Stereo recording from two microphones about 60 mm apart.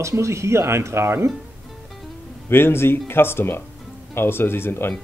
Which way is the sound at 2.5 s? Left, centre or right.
Left.